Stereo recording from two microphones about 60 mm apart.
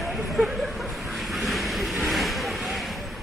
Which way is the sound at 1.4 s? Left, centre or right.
Centre.